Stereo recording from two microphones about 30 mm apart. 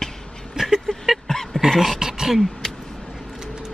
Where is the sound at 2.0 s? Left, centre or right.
Centre.